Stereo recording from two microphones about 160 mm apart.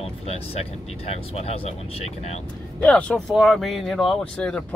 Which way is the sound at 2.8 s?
10° left (ahead or behind).